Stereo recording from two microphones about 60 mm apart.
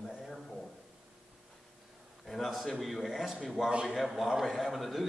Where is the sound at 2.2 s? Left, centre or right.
Centre.